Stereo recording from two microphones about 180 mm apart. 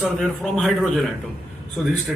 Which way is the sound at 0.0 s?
Centre (ahead or behind).